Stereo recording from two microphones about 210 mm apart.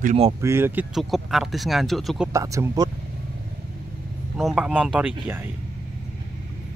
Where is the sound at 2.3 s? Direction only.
15° right (ahead or behind).